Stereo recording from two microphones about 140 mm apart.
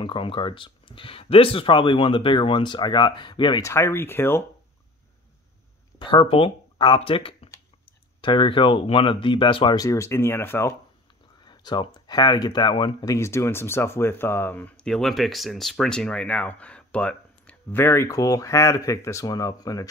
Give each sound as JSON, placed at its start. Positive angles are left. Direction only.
{"t": 0.0, "sound": "speech", "side_deg": 35}
{"t": 3.6, "sound": "speech", "side_deg": 20}
{"t": 5.9, "sound": "speech", "side_deg": 35}
{"t": 11.4, "sound": "speech", "side_deg": 30}
{"t": 13.1, "sound": "speech", "side_deg": 20}